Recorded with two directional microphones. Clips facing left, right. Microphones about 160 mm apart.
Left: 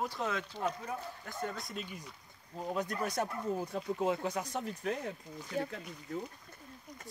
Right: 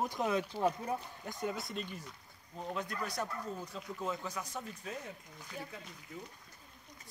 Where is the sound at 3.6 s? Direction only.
60° left (ahead or behind).